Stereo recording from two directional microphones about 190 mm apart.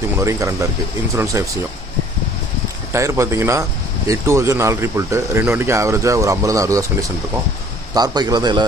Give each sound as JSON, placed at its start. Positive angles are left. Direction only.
{"t": 0.2, "sound": "speech", "side_deg": -15}
{"t": 2.9, "sound": "a man's voice", "side_deg": -15}